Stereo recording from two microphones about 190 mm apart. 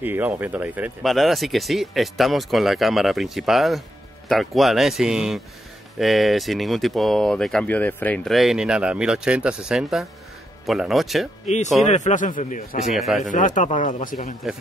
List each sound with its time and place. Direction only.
0.0 s speech: 10° right (ahead or behind)
11.4 s speech: 40° left (ahead or behind)
12.8 s speech: centre (ahead or behind)
13.2 s speech: 40° left (ahead or behind)